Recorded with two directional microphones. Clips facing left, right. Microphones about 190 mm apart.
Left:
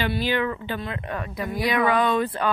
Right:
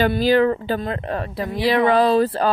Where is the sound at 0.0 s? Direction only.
40° right (ahead or behind).